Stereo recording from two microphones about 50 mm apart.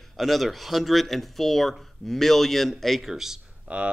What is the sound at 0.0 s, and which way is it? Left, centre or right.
Speech, centre.